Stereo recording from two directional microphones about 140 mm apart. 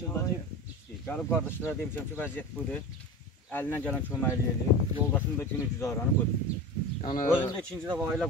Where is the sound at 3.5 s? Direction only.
15° left (ahead or behind).